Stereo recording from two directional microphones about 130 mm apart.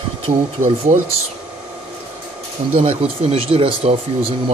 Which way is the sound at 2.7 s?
55° right (ahead or behind).